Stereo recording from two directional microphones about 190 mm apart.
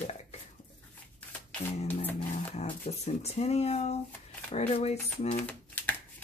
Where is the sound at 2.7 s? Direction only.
35° left (ahead or behind).